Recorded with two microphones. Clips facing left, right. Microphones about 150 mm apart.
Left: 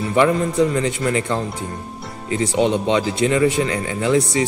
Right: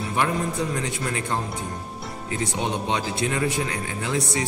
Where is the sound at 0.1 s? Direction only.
90° left.